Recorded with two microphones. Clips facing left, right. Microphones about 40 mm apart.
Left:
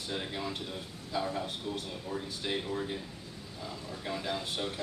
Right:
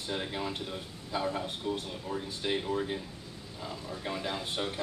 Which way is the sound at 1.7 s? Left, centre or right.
Right.